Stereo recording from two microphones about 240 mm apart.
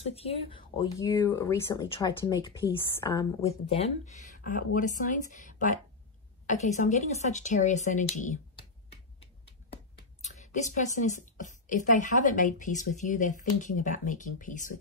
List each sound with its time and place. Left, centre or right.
0.0 s speech: left
3.3 s a woman's voice: left
6.4 s a sound: left
10.2 s a woman's voice: left